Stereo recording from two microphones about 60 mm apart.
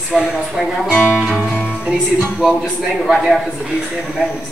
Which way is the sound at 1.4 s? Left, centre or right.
Left.